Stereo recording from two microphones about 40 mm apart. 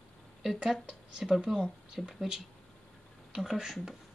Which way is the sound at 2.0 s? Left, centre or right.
Centre.